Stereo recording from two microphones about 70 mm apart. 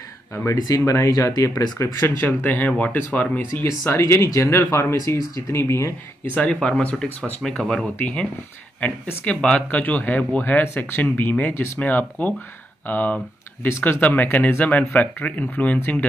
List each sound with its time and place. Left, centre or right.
0.6 s speech: left
1.8 s speech: left
3.8 s speech: left
6.3 s speech: centre
13.7 s speech: left
13.9 s speech: left